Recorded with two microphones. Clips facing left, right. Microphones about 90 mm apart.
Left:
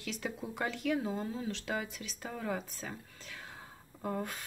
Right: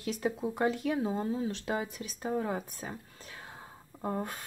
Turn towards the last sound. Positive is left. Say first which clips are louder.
# right 2 dB
turn(degrees=-25)  # may be behind; listen again after turning